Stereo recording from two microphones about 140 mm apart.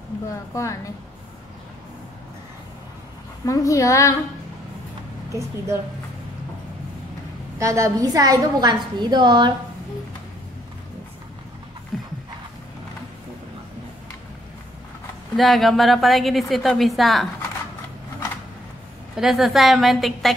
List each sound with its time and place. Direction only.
0.6 s speech: 20° left (ahead or behind)
3.4 s speech: 25° left (ahead or behind)
7.5 s a woman's voice: 20° right (ahead or behind)
11.9 s a sound: centre (ahead or behind)
15.3 s a woman's voice: centre (ahead or behind)
19.1 s a woman's voice: centre (ahead or behind)